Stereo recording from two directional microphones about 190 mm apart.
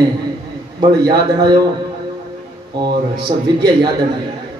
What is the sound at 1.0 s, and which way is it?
Speech, 20° right (ahead or behind).